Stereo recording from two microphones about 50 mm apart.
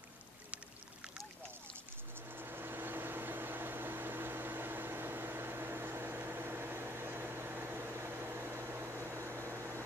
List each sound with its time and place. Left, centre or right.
2.3 s microwave oven: right